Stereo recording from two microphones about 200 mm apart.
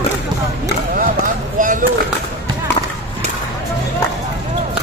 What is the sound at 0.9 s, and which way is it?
Chop, 40° right (ahead or behind).